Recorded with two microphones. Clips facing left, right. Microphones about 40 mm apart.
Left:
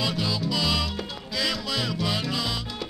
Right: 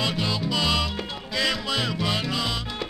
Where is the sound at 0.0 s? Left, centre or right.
Centre.